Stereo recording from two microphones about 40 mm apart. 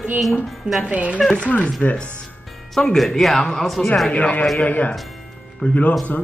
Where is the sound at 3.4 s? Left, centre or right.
Centre.